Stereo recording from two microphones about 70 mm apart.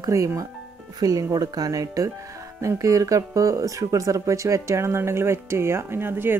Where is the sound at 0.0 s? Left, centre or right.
Right.